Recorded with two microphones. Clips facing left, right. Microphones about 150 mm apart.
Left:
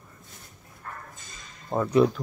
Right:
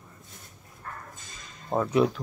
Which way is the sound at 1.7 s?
5° right (ahead or behind).